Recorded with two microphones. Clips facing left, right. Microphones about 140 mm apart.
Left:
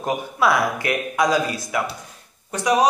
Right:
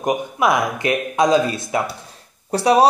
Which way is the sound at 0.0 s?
20° right (ahead or behind).